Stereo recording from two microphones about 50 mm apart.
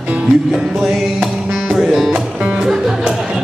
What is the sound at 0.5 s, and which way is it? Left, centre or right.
Music, centre.